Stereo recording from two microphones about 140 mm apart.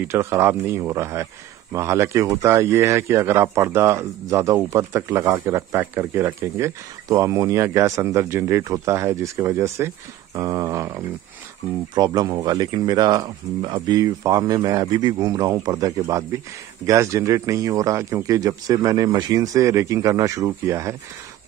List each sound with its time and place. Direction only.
0.1 s speech: 20° right (ahead or behind)